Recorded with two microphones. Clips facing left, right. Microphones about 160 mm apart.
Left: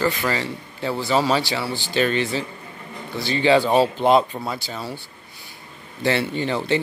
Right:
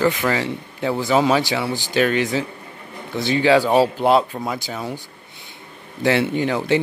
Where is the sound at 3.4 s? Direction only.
10° right (ahead or behind).